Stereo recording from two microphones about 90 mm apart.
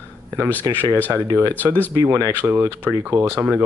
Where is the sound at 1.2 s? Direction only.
50° right (ahead or behind).